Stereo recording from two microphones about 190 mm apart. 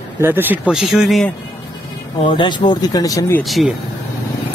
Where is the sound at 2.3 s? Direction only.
25° left (ahead or behind).